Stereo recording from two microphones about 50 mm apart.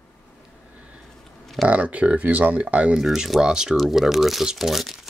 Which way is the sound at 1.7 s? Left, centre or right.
Right.